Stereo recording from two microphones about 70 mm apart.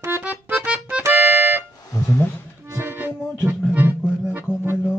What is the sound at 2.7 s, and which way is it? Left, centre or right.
Music, right.